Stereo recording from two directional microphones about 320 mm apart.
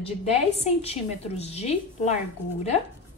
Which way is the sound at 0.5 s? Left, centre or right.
Centre.